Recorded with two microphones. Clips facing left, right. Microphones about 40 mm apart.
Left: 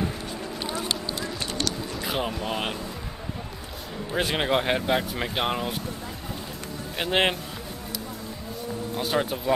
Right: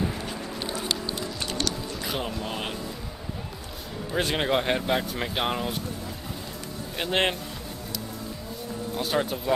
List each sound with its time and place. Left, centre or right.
2.1 s speech: centre
4.1 s speech: centre
7.0 s speech: centre
8.9 s speech: centre